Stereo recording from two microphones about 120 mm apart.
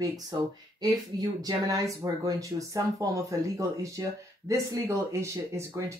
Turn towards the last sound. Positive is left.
turn(degrees=-25)  # may be behind; listen again after turning